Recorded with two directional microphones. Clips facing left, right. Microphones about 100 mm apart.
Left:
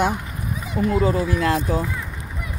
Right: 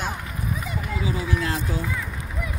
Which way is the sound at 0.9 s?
55° left (ahead or behind).